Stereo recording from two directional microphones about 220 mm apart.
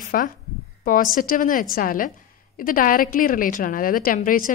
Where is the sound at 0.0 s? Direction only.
40° left (ahead or behind).